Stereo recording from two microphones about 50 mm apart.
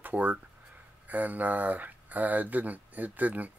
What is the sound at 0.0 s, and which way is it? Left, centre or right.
Speech, right.